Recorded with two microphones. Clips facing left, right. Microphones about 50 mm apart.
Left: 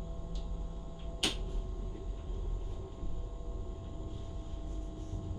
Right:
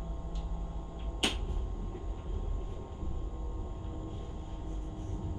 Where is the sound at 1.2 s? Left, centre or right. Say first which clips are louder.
Right 3 dB; right.